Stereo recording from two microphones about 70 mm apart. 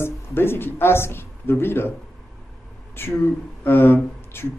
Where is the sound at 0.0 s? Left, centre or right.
Left.